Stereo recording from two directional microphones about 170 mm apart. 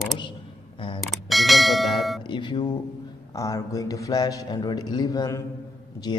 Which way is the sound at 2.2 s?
25° left (ahead or behind).